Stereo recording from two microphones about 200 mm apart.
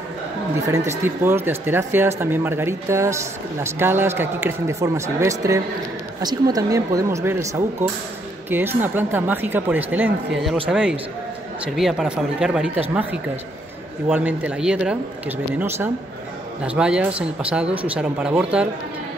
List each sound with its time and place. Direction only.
0.7 s speech: 15° right (ahead or behind)
8.5 s speech: 10° right (ahead or behind)